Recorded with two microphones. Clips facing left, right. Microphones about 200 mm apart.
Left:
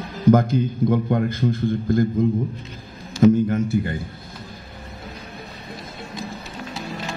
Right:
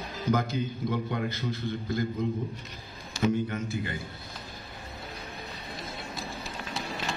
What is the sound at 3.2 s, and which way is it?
Speech, 45° left (ahead or behind).